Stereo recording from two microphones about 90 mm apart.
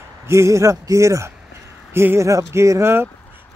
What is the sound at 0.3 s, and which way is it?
Speech, 35° right (ahead or behind).